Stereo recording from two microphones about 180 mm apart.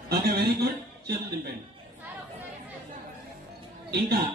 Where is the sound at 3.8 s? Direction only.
65° right (ahead or behind).